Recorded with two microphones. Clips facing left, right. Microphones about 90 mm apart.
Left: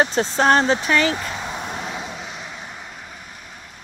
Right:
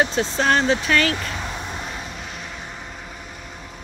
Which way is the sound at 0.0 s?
35° left (ahead or behind).